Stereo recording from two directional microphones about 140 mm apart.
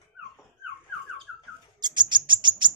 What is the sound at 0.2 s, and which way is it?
Dog, 10° right (ahead or behind).